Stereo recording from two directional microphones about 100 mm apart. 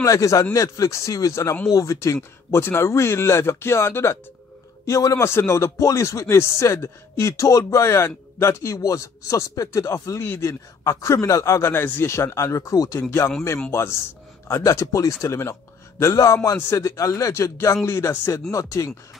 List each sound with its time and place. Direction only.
0.0 s speech: 35° left (ahead or behind)